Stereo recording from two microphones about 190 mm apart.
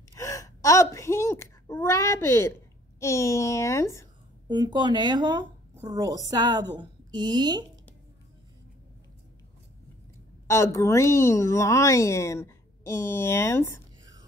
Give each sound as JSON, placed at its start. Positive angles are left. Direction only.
{"t": 0.1, "sound": "gasp", "side_deg": 15}
{"t": 3.0, "sound": "a woman's voice", "side_deg": 15}
{"t": 4.5, "sound": "speech", "side_deg": -25}
{"t": 10.4, "sound": "a woman's voice", "side_deg": 15}